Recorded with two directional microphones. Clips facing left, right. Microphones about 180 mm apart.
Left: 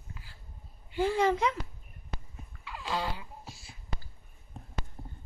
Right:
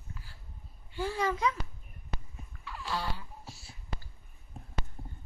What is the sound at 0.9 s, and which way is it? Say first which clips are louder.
Speech: left 5 dB; 25° left (ahead or behind).